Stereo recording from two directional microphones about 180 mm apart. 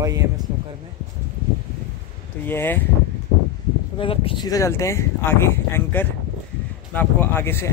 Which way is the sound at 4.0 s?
30° left (ahead or behind).